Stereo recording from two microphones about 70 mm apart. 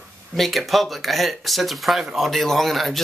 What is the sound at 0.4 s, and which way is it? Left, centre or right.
Speech, centre.